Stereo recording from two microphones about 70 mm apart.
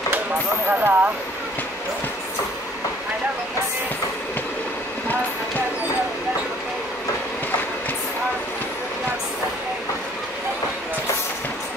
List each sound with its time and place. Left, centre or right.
0.7 s speech: right